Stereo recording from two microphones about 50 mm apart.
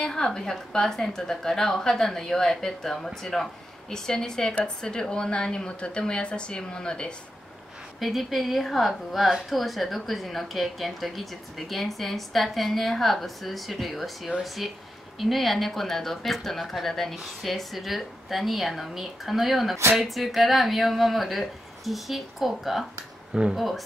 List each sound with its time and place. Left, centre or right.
0.0 s a woman's voice: centre
8.0 s a woman's voice: centre